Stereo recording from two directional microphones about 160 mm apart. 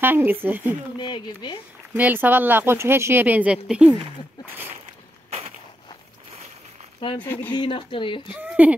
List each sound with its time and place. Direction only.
0.0 s speech: 10° right (ahead or behind)
0.9 s speech: 30° left (ahead or behind)
2.0 s speech: 10° right (ahead or behind)
7.2 s speech: 10° left (ahead or behind)
7.5 s speech: 30° left (ahead or behind)
8.3 s speech: 10° right (ahead or behind)